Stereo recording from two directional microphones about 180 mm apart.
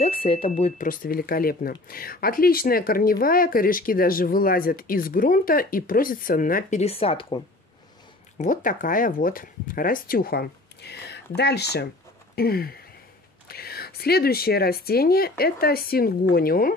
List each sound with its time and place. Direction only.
0.0 s speech: 30° left (ahead or behind)
8.4 s speech: 45° left (ahead or behind)